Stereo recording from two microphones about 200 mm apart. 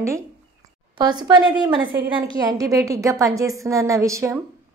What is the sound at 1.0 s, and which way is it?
A woman's voice, 20° right (ahead or behind).